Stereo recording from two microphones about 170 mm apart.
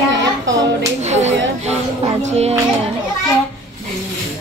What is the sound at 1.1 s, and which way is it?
A woman's voice, 40° right (ahead or behind).